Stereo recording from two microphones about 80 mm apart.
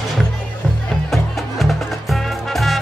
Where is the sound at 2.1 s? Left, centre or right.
Centre.